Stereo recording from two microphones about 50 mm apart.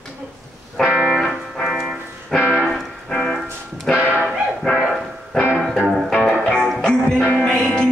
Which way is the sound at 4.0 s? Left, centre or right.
Right.